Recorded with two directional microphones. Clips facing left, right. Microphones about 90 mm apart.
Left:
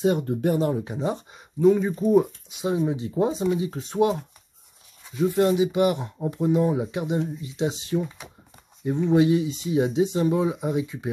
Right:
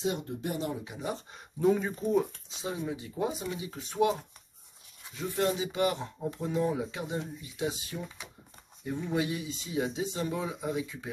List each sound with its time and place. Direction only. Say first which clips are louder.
0.0 s speech: left 10 dB; 55° left (ahead or behind)
1.3 s speech: left 7 dB; centre (ahead or behind)
2.1 s speech: left 8 dB; 20° left (ahead or behind)
9.1 s speech: left 13 dB; 25° left (ahead or behind)